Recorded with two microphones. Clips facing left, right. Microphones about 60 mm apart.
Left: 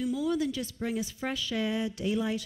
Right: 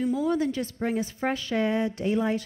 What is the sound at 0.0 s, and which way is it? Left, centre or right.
A woman's voice, right.